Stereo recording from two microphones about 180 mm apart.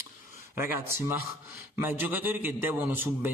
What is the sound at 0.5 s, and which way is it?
A man's voice, 10° right (ahead or behind).